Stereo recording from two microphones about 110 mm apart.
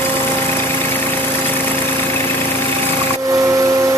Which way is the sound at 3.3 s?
30° right (ahead or behind).